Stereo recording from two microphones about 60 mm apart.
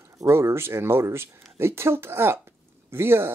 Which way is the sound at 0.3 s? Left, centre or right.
Right.